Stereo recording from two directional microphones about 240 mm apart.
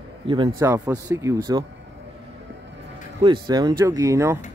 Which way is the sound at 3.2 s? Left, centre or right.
Centre.